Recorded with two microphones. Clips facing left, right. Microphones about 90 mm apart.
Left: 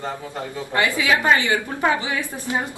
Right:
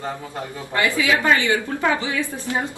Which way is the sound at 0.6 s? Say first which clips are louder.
Even; 20° left (ahead or behind).